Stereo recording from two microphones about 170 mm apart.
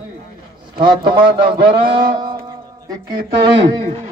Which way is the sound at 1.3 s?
30° right (ahead or behind).